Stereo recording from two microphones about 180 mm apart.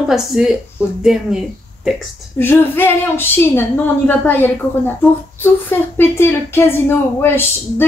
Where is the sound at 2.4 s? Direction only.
10° left (ahead or behind).